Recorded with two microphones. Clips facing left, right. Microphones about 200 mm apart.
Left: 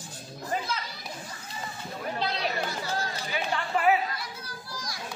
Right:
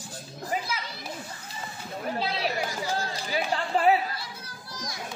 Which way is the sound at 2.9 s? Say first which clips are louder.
Right 2 dB; 35° right (ahead or behind).